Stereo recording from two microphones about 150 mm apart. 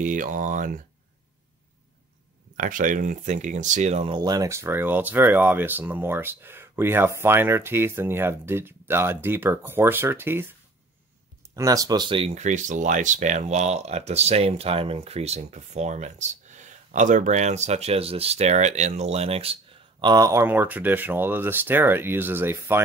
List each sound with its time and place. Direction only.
0.0 s speech: 60° right (ahead or behind)
2.5 s speech: 60° right (ahead or behind)
4.1 s speech: 25° right (ahead or behind)
11.5 s speech: 25° right (ahead or behind)